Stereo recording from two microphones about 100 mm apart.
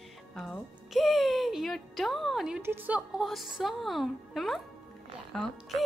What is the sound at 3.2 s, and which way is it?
Speech, centre (ahead or behind).